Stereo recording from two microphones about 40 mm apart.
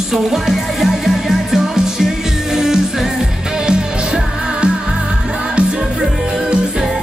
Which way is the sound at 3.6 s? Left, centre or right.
Right.